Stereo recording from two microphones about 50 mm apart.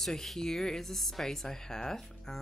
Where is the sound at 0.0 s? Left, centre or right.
Centre.